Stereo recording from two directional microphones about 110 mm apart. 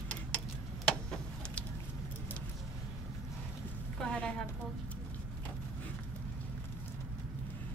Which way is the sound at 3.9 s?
10° left (ahead or behind).